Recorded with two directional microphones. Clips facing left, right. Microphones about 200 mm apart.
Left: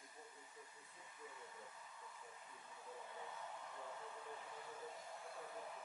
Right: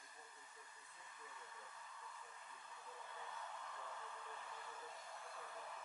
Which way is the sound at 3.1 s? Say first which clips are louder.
Right 1 dB; 15° left (ahead or behind).